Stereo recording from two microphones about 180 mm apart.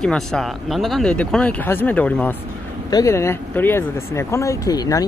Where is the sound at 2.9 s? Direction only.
20° left (ahead or behind).